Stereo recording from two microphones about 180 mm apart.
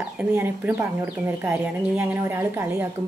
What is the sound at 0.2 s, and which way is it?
Speech, 10° right (ahead or behind).